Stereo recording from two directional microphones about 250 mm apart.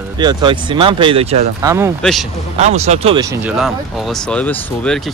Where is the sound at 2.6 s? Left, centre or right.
Right.